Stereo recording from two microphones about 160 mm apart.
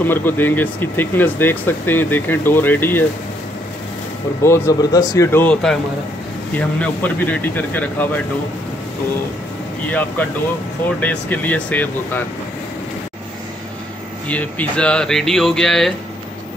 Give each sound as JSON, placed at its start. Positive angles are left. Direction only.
{"t": 0.0, "sound": "speech", "side_deg": 15}
{"t": 4.4, "sound": "speech", "side_deg": 15}
{"t": 6.8, "sound": "speech", "side_deg": 10}
{"t": 9.8, "sound": "speech", "side_deg": 10}
{"t": 14.2, "sound": "speech", "side_deg": 10}